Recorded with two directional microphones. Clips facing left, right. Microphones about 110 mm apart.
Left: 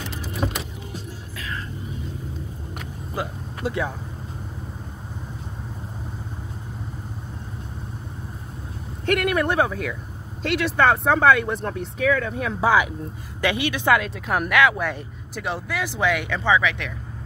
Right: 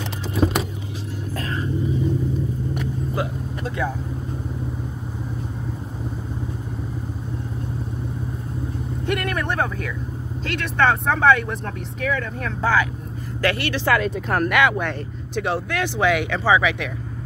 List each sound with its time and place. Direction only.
1.3 s vehicle: 40° right (ahead or behind)
3.2 s vehicle: centre (ahead or behind)
9.0 s speech: centre (ahead or behind)
14.0 s speech: centre (ahead or behind)